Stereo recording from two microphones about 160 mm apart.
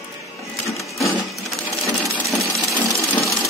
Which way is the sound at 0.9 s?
Centre (ahead or behind).